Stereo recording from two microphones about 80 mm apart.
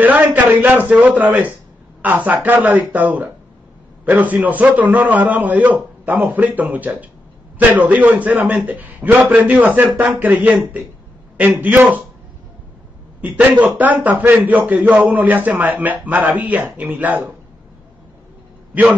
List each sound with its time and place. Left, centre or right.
0.0 s a man's voice: centre
13.2 s a man's voice: right